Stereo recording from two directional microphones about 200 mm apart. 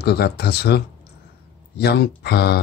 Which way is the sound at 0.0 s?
55° left (ahead or behind).